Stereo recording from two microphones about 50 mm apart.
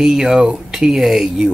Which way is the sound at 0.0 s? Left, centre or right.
Centre.